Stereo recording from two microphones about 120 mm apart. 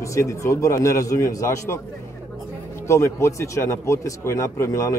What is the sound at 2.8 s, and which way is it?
Speech, 25° left (ahead or behind).